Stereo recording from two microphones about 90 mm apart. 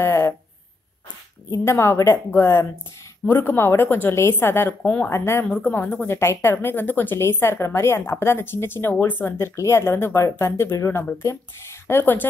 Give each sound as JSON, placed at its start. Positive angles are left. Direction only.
{"t": 0.0, "sound": "a sound", "side_deg": 30}
{"t": 1.5, "sound": "a woman's voice", "side_deg": 30}
{"t": 4.8, "sound": "speech", "side_deg": 15}
{"t": 5.1, "sound": "a woman's voice", "side_deg": 30}